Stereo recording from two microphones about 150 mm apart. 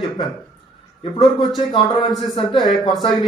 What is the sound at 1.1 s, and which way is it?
Speech, 25° left (ahead or behind).